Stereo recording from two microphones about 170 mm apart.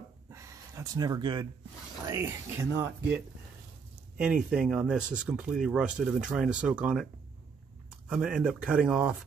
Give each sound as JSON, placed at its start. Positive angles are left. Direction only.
{"t": 0.3, "sound": "a sound", "side_deg": -15}
{"t": 2.0, "sound": "speech", "side_deg": -15}
{"t": 4.2, "sound": "speech", "side_deg": -5}
{"t": 8.1, "sound": "speech", "side_deg": -5}